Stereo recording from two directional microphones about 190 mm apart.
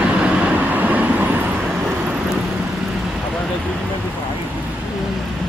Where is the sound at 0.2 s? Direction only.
10° right (ahead or behind).